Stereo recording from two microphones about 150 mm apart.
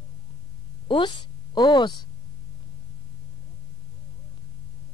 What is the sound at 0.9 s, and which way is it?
A woman's voice, 30° left (ahead or behind).